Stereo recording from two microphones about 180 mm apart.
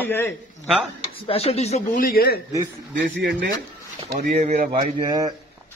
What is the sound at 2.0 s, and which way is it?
Speech, 55° left (ahead or behind).